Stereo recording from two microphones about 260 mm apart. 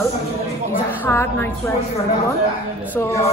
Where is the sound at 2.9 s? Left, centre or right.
Centre.